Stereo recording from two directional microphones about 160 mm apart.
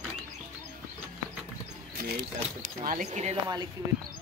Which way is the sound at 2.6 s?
55° right (ahead or behind).